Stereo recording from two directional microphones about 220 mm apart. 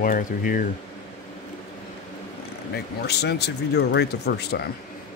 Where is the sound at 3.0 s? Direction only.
50° left (ahead or behind).